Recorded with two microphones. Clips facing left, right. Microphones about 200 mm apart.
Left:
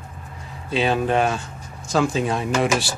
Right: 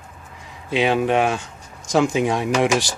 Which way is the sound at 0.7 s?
15° right (ahead or behind).